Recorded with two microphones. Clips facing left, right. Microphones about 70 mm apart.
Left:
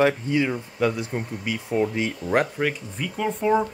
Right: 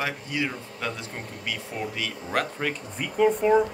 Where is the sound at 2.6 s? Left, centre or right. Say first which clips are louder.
Left 3 dB; centre.